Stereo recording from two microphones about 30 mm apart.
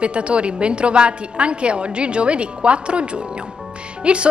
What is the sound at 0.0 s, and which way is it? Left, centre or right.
A woman's voice, right.